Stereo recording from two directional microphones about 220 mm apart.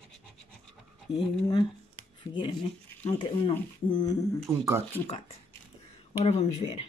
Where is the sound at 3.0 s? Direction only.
25° left (ahead or behind).